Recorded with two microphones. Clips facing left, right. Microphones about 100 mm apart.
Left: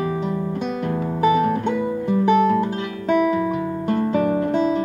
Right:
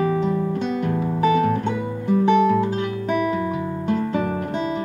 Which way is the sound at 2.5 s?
10° right (ahead or behind).